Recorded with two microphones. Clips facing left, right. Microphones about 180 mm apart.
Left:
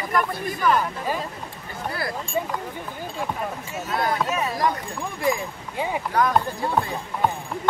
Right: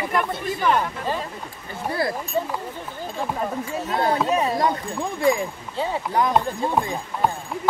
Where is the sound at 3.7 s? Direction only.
35° right (ahead or behind).